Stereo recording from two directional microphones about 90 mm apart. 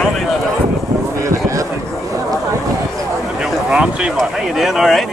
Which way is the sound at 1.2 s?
35° right (ahead or behind).